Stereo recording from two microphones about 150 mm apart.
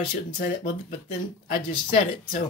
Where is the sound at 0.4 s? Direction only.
60° left (ahead or behind).